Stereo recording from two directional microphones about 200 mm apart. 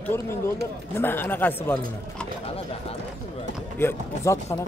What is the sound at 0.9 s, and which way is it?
Speech, 10° left (ahead or behind).